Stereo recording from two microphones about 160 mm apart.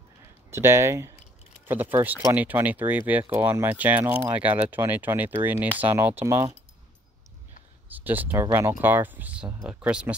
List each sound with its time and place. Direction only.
0.5 s speech: 15° right (ahead or behind)
7.9 s speech: 10° right (ahead or behind)